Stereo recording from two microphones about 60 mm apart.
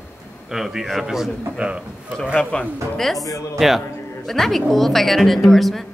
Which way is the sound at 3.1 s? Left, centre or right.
Left.